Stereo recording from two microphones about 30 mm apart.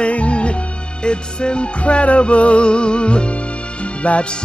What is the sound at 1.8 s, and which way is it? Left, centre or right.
Music, left.